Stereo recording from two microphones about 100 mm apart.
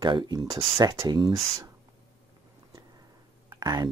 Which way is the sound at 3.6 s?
45° right (ahead or behind).